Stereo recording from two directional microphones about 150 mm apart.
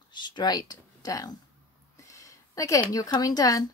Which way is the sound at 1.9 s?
20° left (ahead or behind).